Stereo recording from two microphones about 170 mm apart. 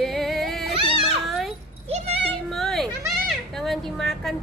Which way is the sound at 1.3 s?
Centre (ahead or behind).